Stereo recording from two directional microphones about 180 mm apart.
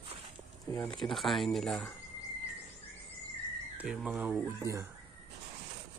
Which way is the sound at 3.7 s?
5° right (ahead or behind).